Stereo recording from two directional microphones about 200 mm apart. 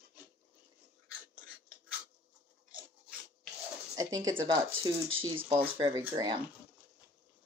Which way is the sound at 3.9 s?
20° right (ahead or behind).